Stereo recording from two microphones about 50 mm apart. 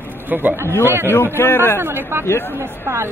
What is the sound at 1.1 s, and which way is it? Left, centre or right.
Speech, left.